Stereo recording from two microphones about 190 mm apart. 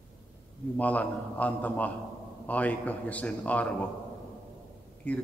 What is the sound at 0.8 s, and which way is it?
A man's voice, 10° left (ahead or behind).